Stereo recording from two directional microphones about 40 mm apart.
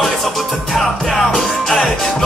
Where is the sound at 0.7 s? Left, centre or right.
Centre.